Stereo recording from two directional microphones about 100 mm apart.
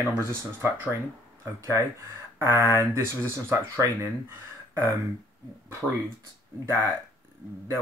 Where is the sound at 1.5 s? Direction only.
30° right (ahead or behind).